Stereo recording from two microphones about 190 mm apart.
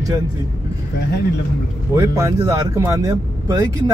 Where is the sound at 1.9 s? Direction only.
15° right (ahead or behind).